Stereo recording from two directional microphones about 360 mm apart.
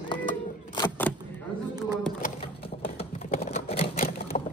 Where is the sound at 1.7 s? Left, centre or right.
Centre.